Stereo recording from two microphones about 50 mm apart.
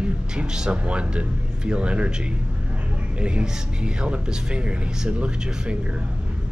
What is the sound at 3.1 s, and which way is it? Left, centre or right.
Speech, right.